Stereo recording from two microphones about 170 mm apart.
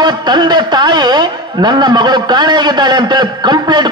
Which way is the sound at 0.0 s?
25° right (ahead or behind).